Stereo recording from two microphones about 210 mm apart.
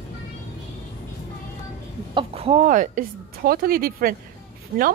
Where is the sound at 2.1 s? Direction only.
25° right (ahead or behind); by 4.9 s 45° right (ahead or behind).